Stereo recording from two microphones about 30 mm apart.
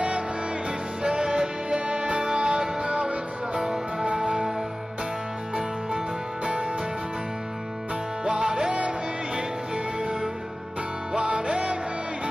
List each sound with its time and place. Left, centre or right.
1.0 s music: right
5.6 s music: right
8.3 s music: right
11.1 s music: right